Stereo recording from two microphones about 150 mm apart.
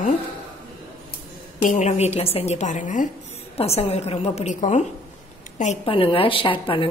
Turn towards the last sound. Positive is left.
turn(degrees=35)  # may be behind; listen again after turning